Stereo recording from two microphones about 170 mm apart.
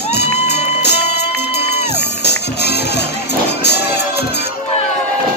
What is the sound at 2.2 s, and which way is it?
Music, 75° left (ahead or behind).